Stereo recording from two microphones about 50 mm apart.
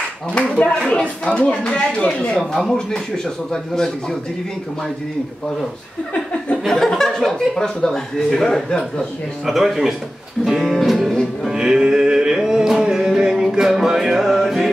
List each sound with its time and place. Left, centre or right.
0.8 s speech: centre
2.5 s a man's voice: centre
6.6 s a man's voice: centre
9.5 s speech: centre
10.4 s music: centre
11.5 s music: centre